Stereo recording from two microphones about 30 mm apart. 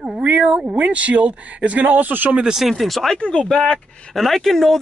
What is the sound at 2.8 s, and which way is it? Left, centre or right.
Speech, centre.